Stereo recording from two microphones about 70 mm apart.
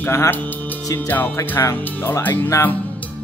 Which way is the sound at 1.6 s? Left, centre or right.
Left.